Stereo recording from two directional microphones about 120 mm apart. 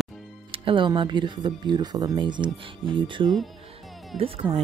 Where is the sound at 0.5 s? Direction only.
45° right (ahead or behind).